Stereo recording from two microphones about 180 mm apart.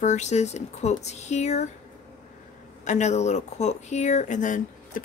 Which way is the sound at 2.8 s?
40° left (ahead or behind).